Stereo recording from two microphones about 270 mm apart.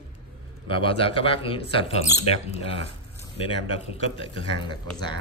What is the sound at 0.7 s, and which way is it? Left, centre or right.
Speech, centre.